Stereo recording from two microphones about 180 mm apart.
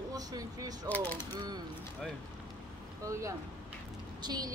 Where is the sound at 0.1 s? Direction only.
20° right (ahead or behind).